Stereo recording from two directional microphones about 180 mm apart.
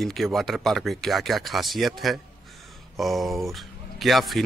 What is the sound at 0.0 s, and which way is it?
Speech, centre (ahead or behind).